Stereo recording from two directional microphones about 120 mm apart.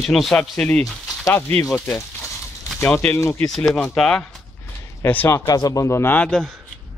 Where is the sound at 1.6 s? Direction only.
5° left (ahead or behind); by 3.5 s 25° left (ahead or behind).